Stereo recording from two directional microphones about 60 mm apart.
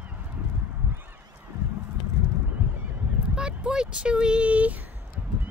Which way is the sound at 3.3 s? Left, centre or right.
Centre.